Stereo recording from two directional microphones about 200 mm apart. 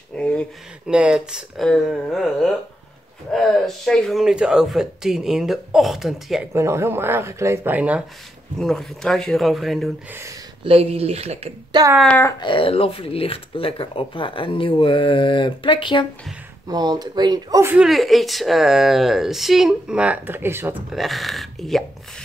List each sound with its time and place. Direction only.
0.1 s speech: 5° left (ahead or behind)
6.5 s speech: 15° right (ahead or behind)
10.6 s a woman's voice: 30° right (ahead or behind)
12.0 s speech: 10° left (ahead or behind)
12.4 s speech: 25° left (ahead or behind)
16.6 s a woman's voice: 20° right (ahead or behind)
17.8 s speech: centre (ahead or behind)